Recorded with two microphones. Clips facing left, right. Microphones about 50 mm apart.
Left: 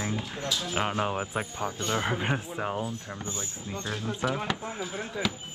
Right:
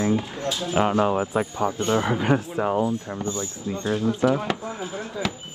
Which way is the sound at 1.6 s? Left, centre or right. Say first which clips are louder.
Right 7 dB; right.